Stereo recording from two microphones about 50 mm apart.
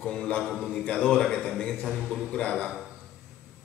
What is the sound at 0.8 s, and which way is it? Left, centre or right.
Speech, centre.